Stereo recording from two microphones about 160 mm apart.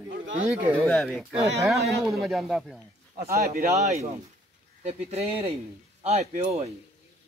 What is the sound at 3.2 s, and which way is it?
Speech, 70° right (ahead or behind).